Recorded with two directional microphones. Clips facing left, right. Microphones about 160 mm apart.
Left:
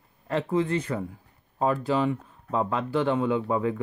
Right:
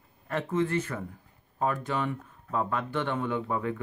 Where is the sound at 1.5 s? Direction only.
30° left (ahead or behind).